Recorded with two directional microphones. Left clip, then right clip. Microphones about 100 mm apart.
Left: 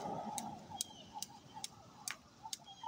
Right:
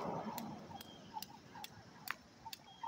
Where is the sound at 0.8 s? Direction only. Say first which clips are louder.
Left 2 dB; 25° left (ahead or behind).